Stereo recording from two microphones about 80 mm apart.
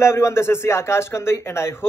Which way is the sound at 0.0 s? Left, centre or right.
Left.